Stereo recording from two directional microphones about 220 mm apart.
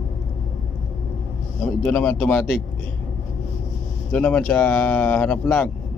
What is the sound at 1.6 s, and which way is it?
Speech, 5° left (ahead or behind).